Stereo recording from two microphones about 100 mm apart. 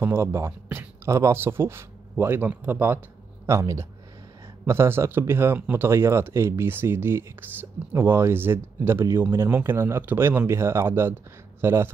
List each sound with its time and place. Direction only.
0.0 s speech: 25° right (ahead or behind)